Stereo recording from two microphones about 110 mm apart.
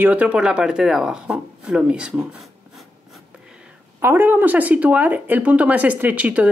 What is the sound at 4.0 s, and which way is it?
Speech, 20° right (ahead or behind).